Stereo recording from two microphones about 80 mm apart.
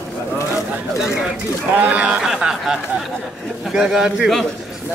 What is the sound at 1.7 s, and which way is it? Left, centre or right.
A man's voice, centre.